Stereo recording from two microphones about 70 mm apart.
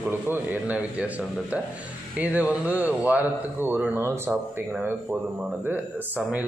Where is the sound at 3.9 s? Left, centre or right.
Right.